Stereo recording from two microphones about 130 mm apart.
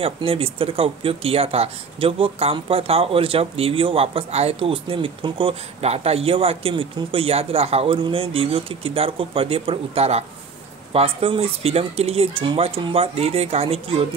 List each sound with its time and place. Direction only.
0.0 s speech: 45° right (ahead or behind)